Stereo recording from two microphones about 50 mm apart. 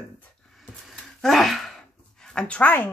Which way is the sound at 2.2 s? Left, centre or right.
Centre.